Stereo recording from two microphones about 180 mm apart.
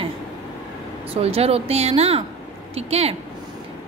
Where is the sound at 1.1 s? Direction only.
35° right (ahead or behind).